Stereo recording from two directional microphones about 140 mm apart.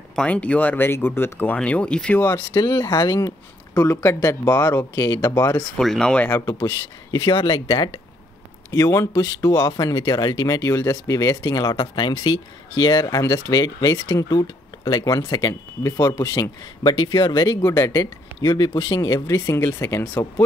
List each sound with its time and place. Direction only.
0.1 s speech: 10° left (ahead or behind); by 3.3 s 25° left (ahead or behind)
3.7 s speech: 15° left (ahead or behind)
5.6 s speech: 5° left (ahead or behind)
7.1 s speech: 35° left (ahead or behind)
8.7 s speech: 25° left (ahead or behind)